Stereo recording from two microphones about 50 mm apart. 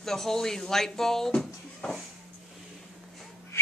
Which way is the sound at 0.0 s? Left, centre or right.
Centre.